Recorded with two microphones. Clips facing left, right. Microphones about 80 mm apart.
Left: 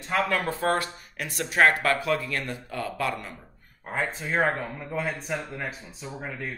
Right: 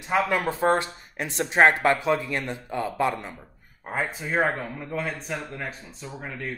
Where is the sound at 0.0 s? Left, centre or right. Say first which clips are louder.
Right 2 dB; centre.